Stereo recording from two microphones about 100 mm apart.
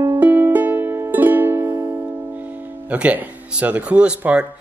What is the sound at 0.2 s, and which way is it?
Music, 20° right (ahead or behind).